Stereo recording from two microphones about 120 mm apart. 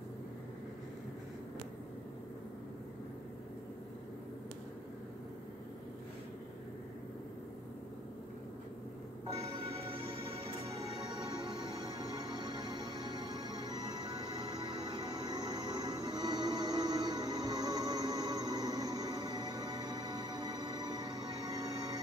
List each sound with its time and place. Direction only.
9.6 s music: 50° right (ahead or behind)
10.7 s music: 35° right (ahead or behind)